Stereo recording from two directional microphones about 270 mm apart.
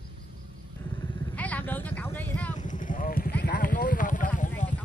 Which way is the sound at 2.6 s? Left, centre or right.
Left.